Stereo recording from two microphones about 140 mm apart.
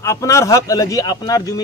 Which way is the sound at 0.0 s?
20° left (ahead or behind).